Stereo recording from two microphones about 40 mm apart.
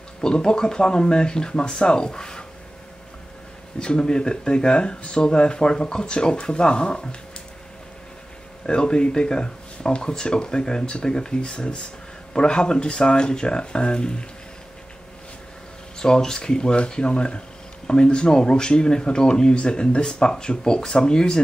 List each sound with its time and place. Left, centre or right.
0.2 s speech: centre
3.8 s speech: centre
8.6 s speech: left
16.0 s speech: centre